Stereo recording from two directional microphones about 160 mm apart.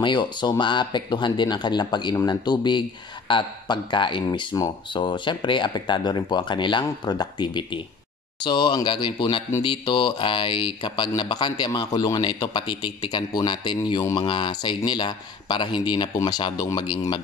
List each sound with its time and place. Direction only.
0.0 s speech: 30° left (ahead or behind)